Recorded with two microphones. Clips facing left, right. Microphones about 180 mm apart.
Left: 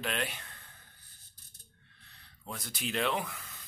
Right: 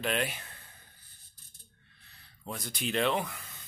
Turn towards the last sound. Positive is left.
turn(degrees=0)  # may be behind; listen again after turning